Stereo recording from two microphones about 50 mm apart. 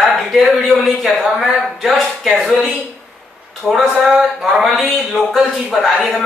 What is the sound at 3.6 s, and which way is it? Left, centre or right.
Speech, centre.